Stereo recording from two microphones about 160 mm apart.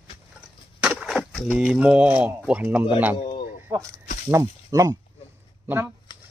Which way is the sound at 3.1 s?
40° left (ahead or behind).